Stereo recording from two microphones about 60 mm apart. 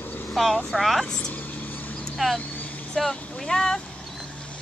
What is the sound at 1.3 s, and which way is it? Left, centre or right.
Vehicle, left.